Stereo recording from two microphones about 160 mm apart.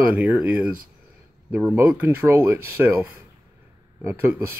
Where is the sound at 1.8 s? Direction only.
10° right (ahead or behind).